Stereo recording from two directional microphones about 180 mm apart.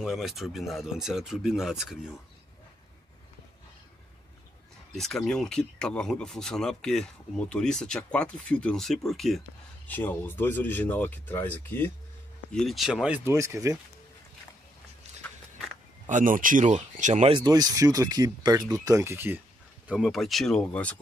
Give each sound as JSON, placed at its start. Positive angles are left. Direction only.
{"t": 0.0, "sound": "speech", "side_deg": 0}
{"t": 4.9, "sound": "speech", "side_deg": 0}
{"t": 12.5, "sound": "speech", "side_deg": 0}
{"t": 16.1, "sound": "speech", "side_deg": -45}
{"t": 17.5, "sound": "speech", "side_deg": -20}
{"t": 19.9, "sound": "speech", "side_deg": 0}